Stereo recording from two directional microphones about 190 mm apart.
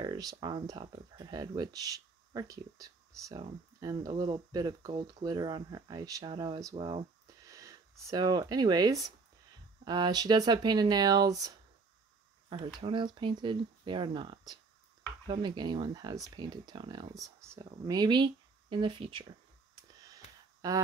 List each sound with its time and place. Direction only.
0.0 s speech: 20° right (ahead or behind)
20.6 s speech: 20° right (ahead or behind)